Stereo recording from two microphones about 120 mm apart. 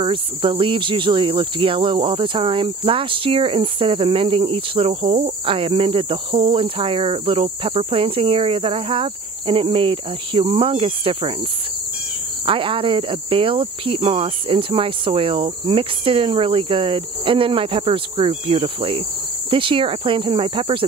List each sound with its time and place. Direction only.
0.0 s cricket: 45° right (ahead or behind)
12.4 s cricket: 45° right (ahead or behind)